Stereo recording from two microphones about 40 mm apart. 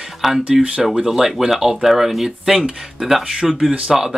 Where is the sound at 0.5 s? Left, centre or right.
Right.